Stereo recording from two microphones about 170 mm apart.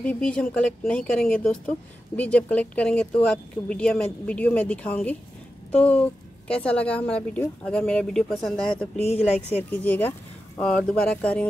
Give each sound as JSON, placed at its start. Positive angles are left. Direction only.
{"t": 0.0, "sound": "a woman's voice", "side_deg": 5}
{"t": 9.1, "sound": "speech", "side_deg": 40}
{"t": 9.7, "sound": "a woman's voice", "side_deg": 10}